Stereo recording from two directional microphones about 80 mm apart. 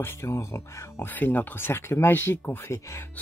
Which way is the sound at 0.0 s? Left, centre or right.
Left.